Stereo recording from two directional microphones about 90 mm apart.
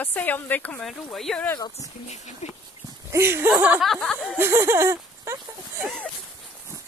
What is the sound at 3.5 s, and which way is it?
Speech, 15° right (ahead or behind).